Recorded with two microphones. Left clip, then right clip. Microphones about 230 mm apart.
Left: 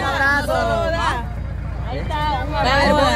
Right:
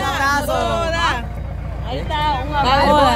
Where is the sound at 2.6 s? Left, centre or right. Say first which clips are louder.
Right 2 dB; centre.